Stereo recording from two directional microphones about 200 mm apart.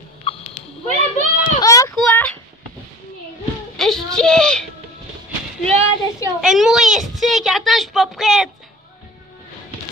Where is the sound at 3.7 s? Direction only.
Centre (ahead or behind).